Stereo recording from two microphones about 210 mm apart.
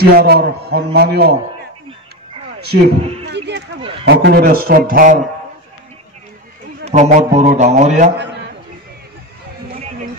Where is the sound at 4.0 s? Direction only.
50° right (ahead or behind).